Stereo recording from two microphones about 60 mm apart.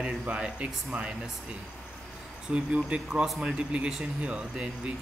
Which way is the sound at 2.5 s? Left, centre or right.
Centre.